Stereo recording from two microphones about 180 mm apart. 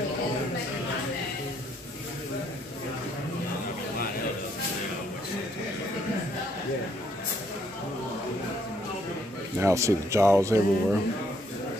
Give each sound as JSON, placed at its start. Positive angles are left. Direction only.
{"t": 9.6, "sound": "speech", "side_deg": -15}